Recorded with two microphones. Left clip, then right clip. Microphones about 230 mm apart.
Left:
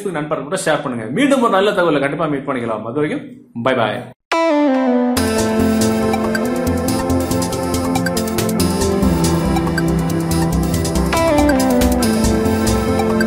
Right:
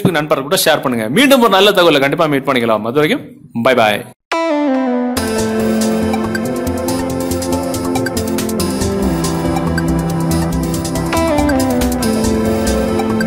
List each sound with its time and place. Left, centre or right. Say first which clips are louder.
0.7 s speech: right 3 dB; right
4.5 s music: left 1 dB; centre
11.1 s music: even; centre